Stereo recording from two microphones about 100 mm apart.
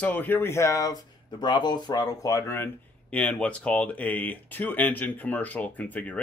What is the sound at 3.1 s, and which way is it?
Speech, 10° left (ahead or behind).